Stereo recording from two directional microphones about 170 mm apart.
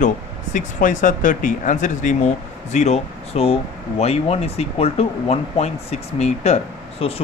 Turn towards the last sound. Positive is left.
turn(degrees=40)  # may be behind; listen again after turning